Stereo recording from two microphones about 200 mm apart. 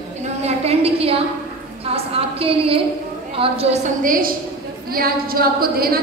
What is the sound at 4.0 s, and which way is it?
A woman's voice, 45° right (ahead or behind).